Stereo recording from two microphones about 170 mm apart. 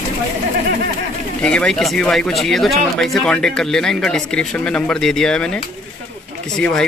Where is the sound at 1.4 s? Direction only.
5° left (ahead or behind).